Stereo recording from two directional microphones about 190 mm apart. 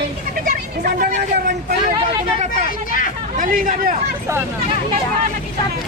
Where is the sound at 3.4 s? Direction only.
45° right (ahead or behind).